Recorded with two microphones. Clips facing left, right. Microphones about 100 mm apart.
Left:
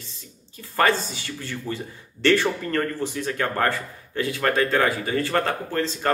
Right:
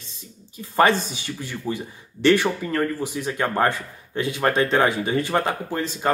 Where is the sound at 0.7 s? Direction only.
20° right (ahead or behind).